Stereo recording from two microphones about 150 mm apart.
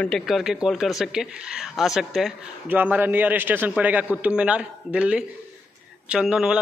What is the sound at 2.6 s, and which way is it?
A man's voice, 10° right (ahead or behind).